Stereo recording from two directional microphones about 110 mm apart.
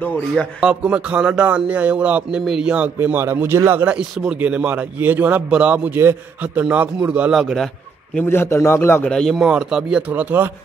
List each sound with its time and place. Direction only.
0.0 s a man's voice: 15° left (ahead or behind)
0.6 s a man's voice: 10° right (ahead or behind)
3.0 s a man's voice: 20° right (ahead or behind)
3.9 s a man's voice: 10° right (ahead or behind)
8.3 s a man's voice: 25° left (ahead or behind)
9.1 s a man's voice: 5° left (ahead or behind); by 10.5 s 15° right (ahead or behind)